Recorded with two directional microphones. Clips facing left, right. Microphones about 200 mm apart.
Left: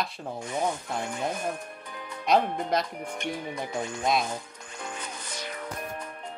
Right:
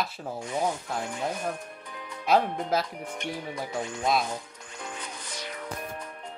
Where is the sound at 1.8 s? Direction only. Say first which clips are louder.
Left 1 dB; 50° left (ahead or behind).